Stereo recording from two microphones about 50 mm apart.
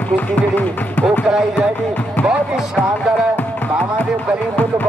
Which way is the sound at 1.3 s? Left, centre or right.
Centre.